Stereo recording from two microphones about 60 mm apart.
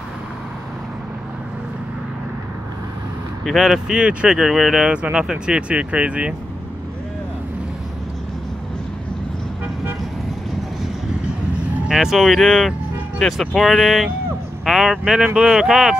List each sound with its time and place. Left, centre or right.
3.4 s speech: centre
4.9 s speech: centre
11.9 s speech: centre